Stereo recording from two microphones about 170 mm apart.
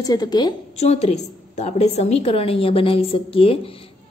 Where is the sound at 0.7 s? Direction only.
40° left (ahead or behind).